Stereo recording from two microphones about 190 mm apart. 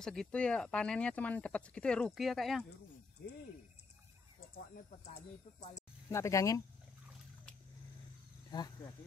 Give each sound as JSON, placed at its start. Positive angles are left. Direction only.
{"t": 0.0, "sound": "speech", "side_deg": 5}
{"t": 5.6, "sound": "speech", "side_deg": 15}
{"t": 8.5, "sound": "speech", "side_deg": 20}